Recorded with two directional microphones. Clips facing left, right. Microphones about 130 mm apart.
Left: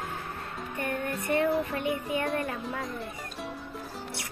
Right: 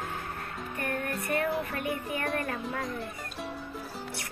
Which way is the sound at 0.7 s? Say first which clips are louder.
Left 1 dB; 25° left (ahead or behind).